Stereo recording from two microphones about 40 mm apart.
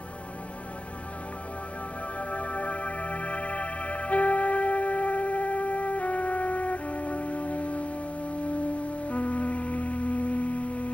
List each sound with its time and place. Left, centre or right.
2.1 s music: left